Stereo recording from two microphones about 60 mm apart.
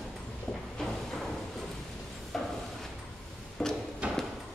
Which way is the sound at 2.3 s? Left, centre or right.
Centre.